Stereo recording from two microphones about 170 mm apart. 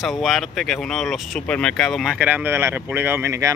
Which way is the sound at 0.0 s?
Centre (ahead or behind).